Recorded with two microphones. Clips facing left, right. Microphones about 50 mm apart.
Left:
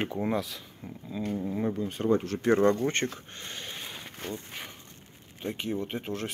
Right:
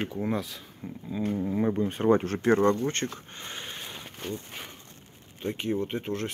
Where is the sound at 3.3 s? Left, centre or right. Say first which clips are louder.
Right 1 dB; centre.